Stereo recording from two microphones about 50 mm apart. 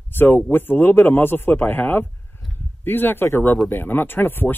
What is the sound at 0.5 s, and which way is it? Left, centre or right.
Speech, left.